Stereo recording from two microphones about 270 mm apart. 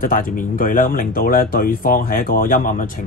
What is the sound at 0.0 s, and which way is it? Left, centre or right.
Speech, left.